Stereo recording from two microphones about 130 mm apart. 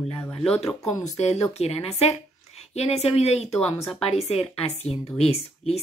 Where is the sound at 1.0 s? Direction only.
55° left (ahead or behind).